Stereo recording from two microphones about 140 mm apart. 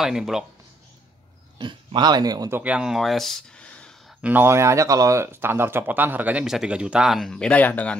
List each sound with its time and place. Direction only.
0.0 s speech: 5° right (ahead or behind)
1.6 s speech: 35° right (ahead or behind)
2.6 s speech: 5° right (ahead or behind)
4.2 s speech: 15° right (ahead or behind); by 8.0 s 10° left (ahead or behind)